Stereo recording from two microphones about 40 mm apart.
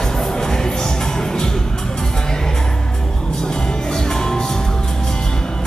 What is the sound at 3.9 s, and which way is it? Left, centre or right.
Music, centre.